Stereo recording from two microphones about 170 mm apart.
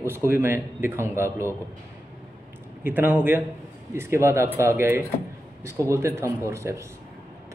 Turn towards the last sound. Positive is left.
turn(degrees=-15)  # may be behind; listen again after turning